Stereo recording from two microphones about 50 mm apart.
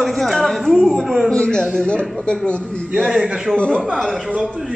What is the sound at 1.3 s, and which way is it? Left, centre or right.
A man's voice, centre.